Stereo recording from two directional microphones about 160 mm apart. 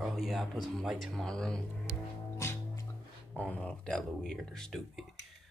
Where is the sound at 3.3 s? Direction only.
10° left (ahead or behind).